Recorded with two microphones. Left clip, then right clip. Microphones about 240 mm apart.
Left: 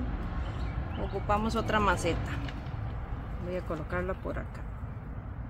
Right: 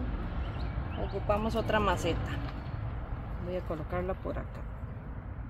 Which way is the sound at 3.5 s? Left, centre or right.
Centre.